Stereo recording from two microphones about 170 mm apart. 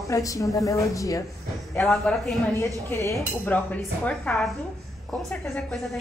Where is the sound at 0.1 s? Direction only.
20° left (ahead or behind).